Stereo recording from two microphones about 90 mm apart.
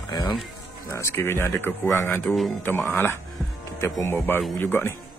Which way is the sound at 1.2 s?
25° left (ahead or behind).